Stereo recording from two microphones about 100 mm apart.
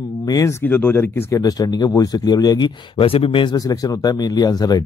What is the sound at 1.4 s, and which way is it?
Speech, 40° left (ahead or behind).